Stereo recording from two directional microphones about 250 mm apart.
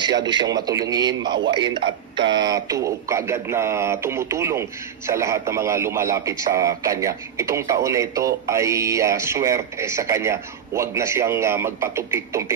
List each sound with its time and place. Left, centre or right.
0.0 s speech: centre